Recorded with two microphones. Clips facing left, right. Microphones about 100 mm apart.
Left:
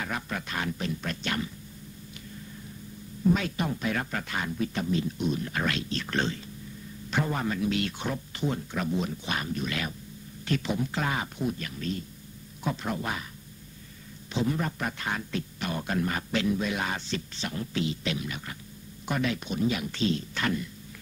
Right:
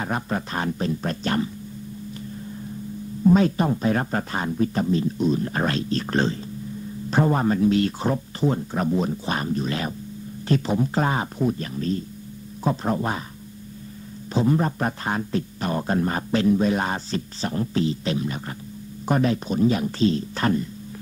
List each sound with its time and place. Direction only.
0.0 s a man's voice: 35° right (ahead or behind)
3.3 s a man's voice: 35° right (ahead or behind)
14.3 s a man's voice: 35° right (ahead or behind)